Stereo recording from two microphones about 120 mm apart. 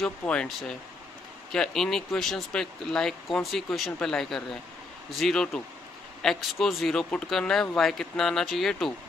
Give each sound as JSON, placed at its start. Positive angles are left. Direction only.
{"t": 0.0, "sound": "speech", "side_deg": 10}